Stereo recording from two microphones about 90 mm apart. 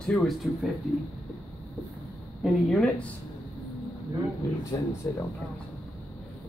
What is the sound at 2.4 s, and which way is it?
Speech, 5° left (ahead or behind).